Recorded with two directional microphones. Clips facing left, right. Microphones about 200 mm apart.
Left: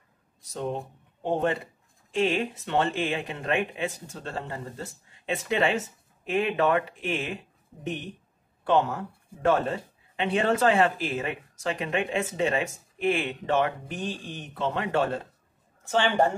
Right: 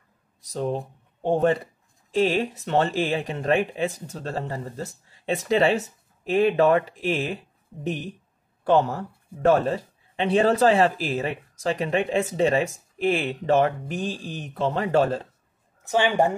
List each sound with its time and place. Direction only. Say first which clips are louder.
0.5 s speech: right 4 dB; 35° right (ahead or behind)
15.8 s speech: right 2 dB; 15° right (ahead or behind)